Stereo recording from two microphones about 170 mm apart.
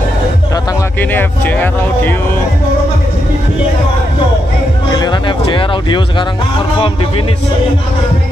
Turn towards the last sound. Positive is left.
turn(degrees=35)  # may be behind; listen again after turning